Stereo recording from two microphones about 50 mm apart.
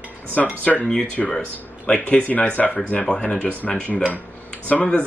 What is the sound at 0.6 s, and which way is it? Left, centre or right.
Speech, left.